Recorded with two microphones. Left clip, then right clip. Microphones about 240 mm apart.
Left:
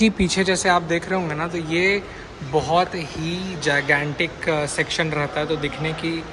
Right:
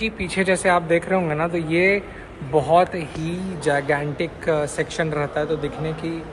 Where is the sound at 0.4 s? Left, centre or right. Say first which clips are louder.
Right 2 dB; centre.